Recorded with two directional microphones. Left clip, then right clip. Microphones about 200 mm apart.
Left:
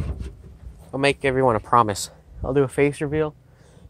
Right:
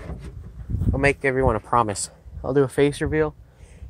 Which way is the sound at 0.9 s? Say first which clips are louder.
Even; 15° left (ahead or behind).